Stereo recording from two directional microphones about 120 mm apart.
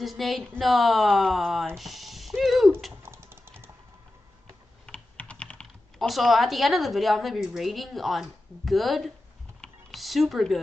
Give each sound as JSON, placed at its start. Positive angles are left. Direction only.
{"t": 0.0, "sound": "speech", "side_deg": 0}
{"t": 1.8, "sound": "music", "side_deg": 0}
{"t": 2.9, "sound": "typing", "side_deg": -20}
{"t": 4.8, "sound": "speech", "side_deg": 10}
{"t": 9.6, "sound": "typing", "side_deg": 5}